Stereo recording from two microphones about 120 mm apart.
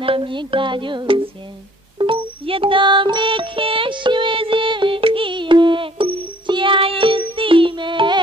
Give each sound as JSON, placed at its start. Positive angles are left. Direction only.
{"t": 0.0, "sound": "music", "side_deg": -45}